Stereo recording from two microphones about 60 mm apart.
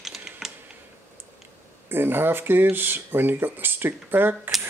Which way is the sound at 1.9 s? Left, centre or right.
Right.